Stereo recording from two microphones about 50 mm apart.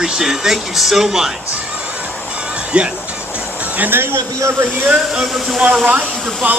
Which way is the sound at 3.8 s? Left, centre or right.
Right.